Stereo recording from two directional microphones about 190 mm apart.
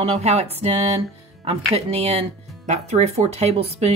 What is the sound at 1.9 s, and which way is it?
Speech, 30° right (ahead or behind).